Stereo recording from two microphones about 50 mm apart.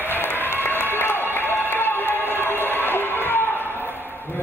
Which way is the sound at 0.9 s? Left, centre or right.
Left.